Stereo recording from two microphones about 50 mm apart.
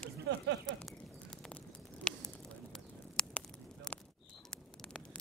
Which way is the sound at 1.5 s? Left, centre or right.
Centre.